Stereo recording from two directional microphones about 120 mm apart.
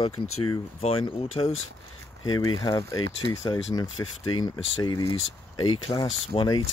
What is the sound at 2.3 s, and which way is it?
Speech, 35° left (ahead or behind).